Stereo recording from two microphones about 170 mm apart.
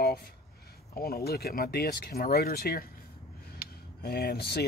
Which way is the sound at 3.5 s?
65° left (ahead or behind).